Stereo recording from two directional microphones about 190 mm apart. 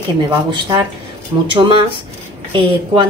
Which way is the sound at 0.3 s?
25° right (ahead or behind).